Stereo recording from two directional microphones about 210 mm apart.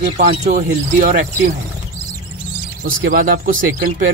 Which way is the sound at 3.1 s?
40° right (ahead or behind).